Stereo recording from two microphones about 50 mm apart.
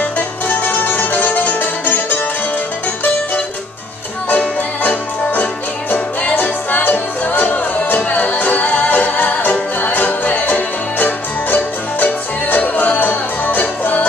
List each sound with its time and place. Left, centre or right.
0.0 s music: left
4.8 s music: left